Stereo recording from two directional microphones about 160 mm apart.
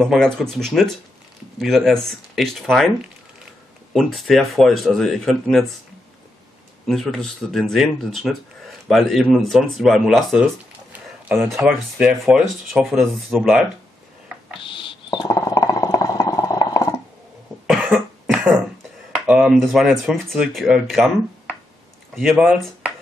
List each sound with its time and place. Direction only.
0.0 s speech: 5° left (ahead or behind)
3.9 s speech: centre (ahead or behind)
6.9 s speech: centre (ahead or behind)
14.6 s a sound: 30° left (ahead or behind)
17.6 s cough: 5° right (ahead or behind)
19.1 s speech: 5° right (ahead or behind)
22.1 s speech: centre (ahead or behind)